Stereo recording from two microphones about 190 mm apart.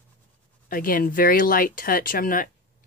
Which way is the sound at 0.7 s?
50° left (ahead or behind).